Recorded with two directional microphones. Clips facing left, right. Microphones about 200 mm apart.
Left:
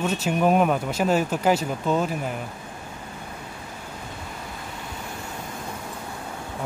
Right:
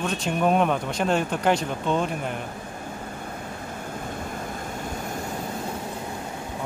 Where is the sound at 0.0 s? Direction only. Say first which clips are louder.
Left 2 dB; 5° left (ahead or behind).